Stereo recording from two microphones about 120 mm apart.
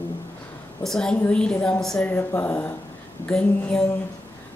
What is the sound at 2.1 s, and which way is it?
A woman's voice, 20° left (ahead or behind).